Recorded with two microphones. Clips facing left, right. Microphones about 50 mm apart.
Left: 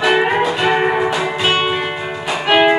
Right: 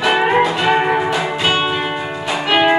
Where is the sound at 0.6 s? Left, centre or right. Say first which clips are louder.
Even; centre.